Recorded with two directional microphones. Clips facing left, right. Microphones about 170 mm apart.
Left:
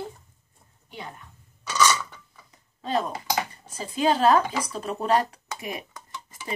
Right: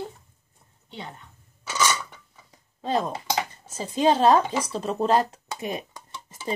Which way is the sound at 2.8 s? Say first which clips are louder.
Right 1 dB; 25° right (ahead or behind).